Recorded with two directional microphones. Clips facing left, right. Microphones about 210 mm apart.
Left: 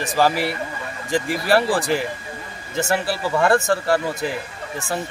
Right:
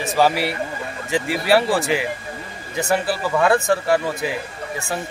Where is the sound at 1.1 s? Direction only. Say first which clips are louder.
Right 1 dB; 10° right (ahead or behind).